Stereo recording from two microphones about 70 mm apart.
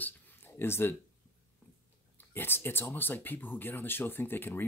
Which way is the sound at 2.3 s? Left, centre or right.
Left.